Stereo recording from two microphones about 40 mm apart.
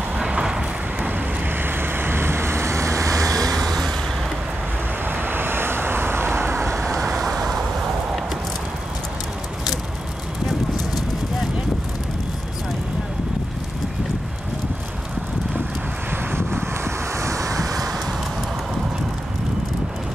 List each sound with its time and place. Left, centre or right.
0.2 s vehicle: centre
1.6 s vehicle: right
3.3 s vehicle: centre
5.0 s vehicle: right
6.7 s vehicle: centre
16.1 s vehicle: right